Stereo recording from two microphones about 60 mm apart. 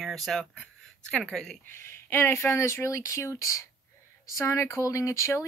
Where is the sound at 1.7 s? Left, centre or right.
Left.